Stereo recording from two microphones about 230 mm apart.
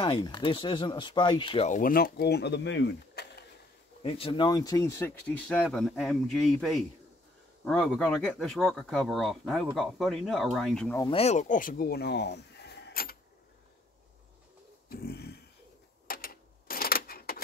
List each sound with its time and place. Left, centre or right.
0.0 s speech: left
4.0 s speech: left; by 11.1 s centre
11.1 s speech: left
14.9 s beatboxing: left
16.1 s a sound: left